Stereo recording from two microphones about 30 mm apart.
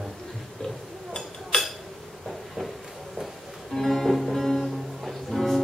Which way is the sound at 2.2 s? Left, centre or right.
Centre.